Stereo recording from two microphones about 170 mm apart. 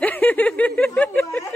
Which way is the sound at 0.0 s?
10° left (ahead or behind).